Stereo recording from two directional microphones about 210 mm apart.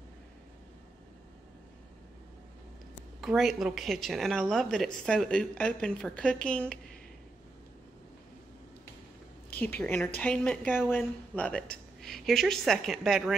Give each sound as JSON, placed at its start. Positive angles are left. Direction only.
{"t": 3.2, "sound": "a woman's voice", "side_deg": 0}
{"t": 9.8, "sound": "a woman's voice", "side_deg": 10}